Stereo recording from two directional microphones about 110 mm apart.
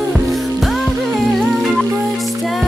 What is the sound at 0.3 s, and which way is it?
Music, centre (ahead or behind).